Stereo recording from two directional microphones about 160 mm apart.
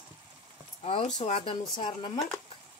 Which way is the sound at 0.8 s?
40° left (ahead or behind).